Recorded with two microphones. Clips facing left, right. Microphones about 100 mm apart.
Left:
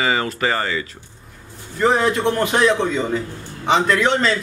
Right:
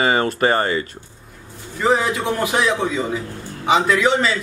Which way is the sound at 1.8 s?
Centre (ahead or behind).